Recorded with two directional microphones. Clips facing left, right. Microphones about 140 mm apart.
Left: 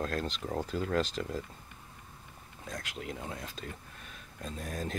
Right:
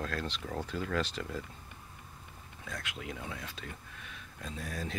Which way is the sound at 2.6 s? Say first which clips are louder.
Left 2 dB; 40° left (ahead or behind).